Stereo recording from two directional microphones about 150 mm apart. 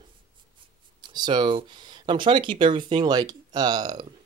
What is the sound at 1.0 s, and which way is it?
Speech, 30° right (ahead or behind).